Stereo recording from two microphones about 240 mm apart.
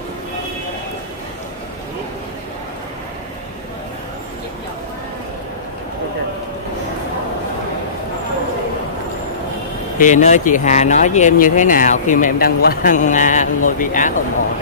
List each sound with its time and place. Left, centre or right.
9.9 s speech: left